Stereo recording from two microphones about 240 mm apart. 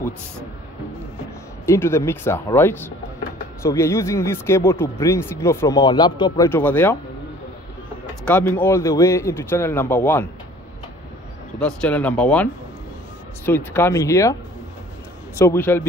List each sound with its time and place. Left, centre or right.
1.7 s speech: centre
8.3 s speech: centre
11.6 s speech: centre
13.5 s speech: centre
15.3 s speech: centre